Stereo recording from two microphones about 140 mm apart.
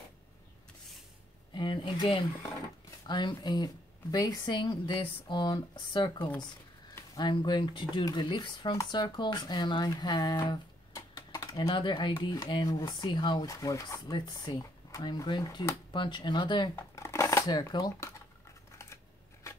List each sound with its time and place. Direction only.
1.5 s speech: 35° left (ahead or behind)
13.5 s speech: 25° left (ahead or behind)
16.7 s speech: 20° left (ahead or behind)